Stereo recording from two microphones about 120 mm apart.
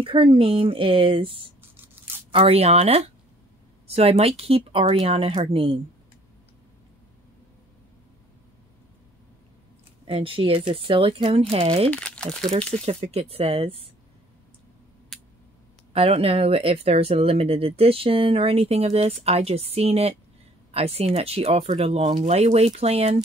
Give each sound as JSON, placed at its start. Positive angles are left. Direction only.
{"t": 0.0, "sound": "speech", "side_deg": -45}
{"t": 1.6, "sound": "a sound", "side_deg": -15}
{"t": 2.3, "sound": "speech", "side_deg": -55}
{"t": 10.0, "sound": "speech", "side_deg": -50}
{"t": 11.9, "sound": "speech", "side_deg": 10}
{"t": 12.7, "sound": "speech", "side_deg": -55}
{"t": 15.1, "sound": "a sound", "side_deg": 0}
{"t": 15.9, "sound": "speech", "side_deg": -55}